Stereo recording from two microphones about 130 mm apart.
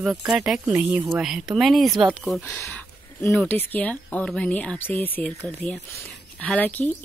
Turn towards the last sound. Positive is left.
turn(degrees=10)  # may be behind; listen again after turning